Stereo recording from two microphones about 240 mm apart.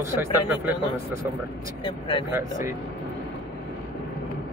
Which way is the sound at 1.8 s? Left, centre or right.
Left.